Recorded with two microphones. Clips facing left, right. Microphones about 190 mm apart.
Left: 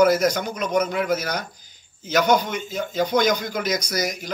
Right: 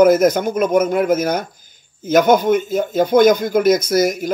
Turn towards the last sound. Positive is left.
turn(degrees=-50)  # may be behind; listen again after turning